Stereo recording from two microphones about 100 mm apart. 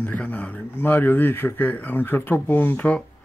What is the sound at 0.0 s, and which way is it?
Speech, 15° left (ahead or behind).